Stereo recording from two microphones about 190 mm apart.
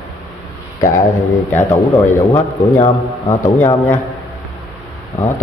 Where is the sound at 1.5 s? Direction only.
15° left (ahead or behind).